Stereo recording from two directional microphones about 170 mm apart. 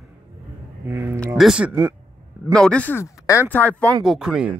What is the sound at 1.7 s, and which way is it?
Speech, 15° right (ahead or behind).